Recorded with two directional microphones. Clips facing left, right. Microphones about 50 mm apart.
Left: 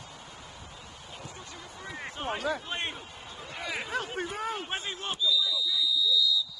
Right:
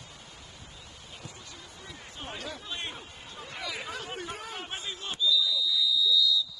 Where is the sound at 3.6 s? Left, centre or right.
Left.